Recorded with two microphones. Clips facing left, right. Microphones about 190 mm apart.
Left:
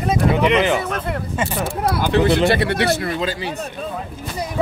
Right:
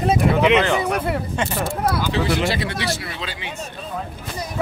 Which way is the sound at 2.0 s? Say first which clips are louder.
Left 10 dB; 55° left (ahead or behind).